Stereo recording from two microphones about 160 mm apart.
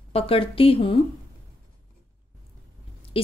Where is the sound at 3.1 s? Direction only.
35° left (ahead or behind).